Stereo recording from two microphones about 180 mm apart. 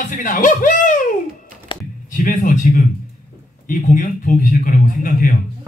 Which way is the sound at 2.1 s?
50° left (ahead or behind).